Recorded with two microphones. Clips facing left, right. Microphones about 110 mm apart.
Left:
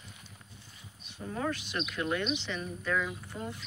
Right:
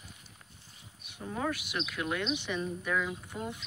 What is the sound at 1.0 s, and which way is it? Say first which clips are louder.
Speech: even; 10° right (ahead or behind).